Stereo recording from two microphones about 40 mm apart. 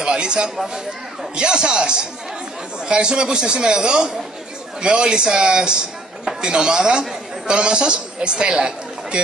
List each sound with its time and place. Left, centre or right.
0.0 s speech: right